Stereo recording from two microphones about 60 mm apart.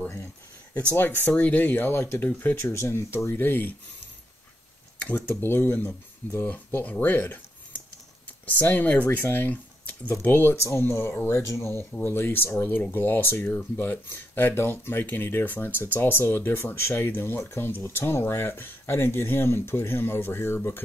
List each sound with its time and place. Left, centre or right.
1.2 s speech: left
4.9 s a sound: left
5.3 s speech: left